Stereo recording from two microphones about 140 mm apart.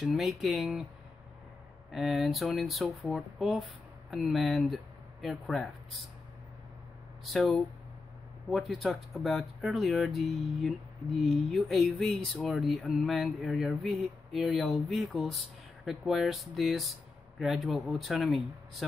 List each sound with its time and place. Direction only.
0.0 s speech: centre (ahead or behind)
1.9 s speech: centre (ahead or behind)
7.2 s speech: centre (ahead or behind)